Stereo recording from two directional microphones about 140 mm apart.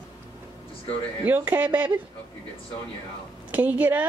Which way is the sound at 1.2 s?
15° right (ahead or behind).